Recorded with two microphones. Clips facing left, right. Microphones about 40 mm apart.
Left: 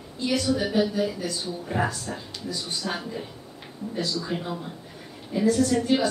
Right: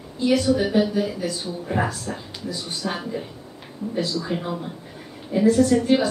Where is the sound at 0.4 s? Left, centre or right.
Centre.